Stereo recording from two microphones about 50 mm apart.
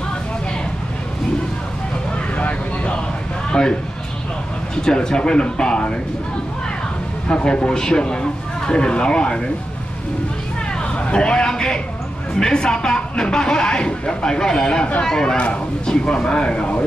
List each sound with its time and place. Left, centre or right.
2.3 s vehicle: left
3.4 s a sound: centre
4.8 s speech: centre
7.2 s speech: centre
10.8 s speech: left